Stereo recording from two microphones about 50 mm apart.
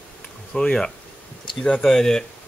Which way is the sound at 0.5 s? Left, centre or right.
Centre.